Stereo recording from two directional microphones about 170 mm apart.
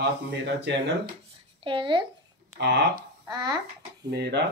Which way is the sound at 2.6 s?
70° right (ahead or behind).